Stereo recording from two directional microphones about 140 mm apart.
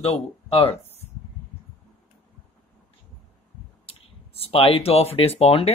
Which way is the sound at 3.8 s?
45° left (ahead or behind).